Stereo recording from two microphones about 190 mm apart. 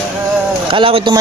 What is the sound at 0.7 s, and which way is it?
Speech, 30° right (ahead or behind).